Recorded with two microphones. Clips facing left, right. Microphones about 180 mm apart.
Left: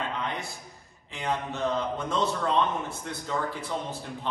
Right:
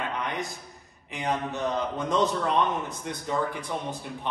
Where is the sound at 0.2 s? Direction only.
15° right (ahead or behind).